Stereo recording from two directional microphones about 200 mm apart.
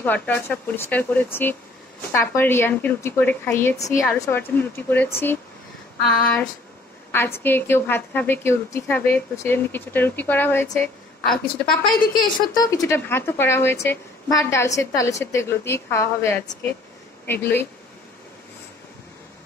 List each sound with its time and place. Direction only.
0.0 s a woman's voice: 10° left (ahead or behind)
12.5 s a woman's voice: 15° left (ahead or behind)